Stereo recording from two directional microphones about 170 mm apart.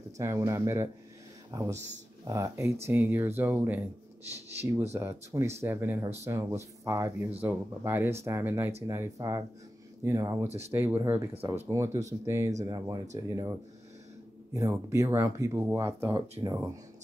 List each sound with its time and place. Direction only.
0.2 s speech: 15° right (ahead or behind)
4.9 s speech: 15° right (ahead or behind)